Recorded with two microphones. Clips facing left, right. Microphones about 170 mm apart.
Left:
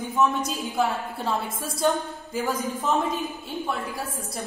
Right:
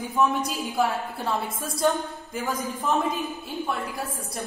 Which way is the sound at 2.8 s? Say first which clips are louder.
Right 2 dB; centre (ahead or behind).